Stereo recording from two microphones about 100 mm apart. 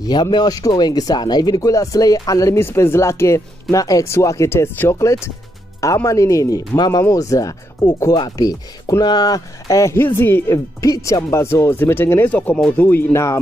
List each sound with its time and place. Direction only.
0.0 s speech: 45° left (ahead or behind); by 13.4 s 30° left (ahead or behind)